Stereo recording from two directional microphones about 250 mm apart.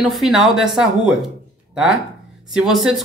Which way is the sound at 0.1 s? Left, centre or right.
Centre.